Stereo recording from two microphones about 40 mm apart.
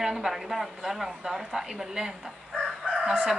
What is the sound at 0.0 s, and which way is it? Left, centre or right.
A woman's voice, centre.